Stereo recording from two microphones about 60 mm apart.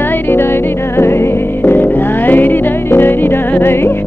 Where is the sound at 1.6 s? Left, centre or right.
Left.